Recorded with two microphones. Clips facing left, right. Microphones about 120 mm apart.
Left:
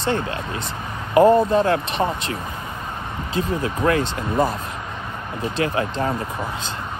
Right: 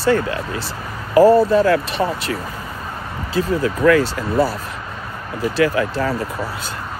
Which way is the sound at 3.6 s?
25° left (ahead or behind).